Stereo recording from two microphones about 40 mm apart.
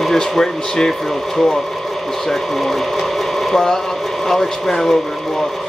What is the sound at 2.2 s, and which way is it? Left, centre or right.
Speech, centre.